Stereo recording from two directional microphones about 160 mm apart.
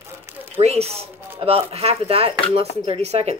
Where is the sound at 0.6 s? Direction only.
40° right (ahead or behind).